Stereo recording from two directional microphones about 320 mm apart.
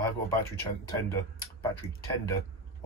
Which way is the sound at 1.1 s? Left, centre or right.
Centre.